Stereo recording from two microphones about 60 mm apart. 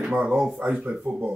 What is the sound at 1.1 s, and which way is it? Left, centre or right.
Speech, right.